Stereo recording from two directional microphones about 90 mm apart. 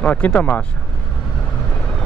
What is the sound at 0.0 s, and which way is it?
Speech, 15° left (ahead or behind).